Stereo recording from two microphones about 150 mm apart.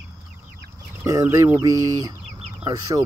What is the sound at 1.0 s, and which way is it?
Speech, 20° right (ahead or behind).